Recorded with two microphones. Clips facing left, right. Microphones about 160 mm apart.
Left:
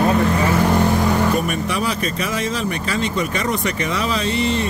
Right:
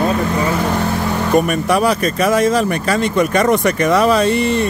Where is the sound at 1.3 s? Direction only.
50° right (ahead or behind).